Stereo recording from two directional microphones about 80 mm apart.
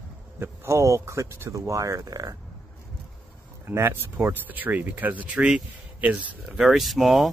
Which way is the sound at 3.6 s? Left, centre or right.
Right.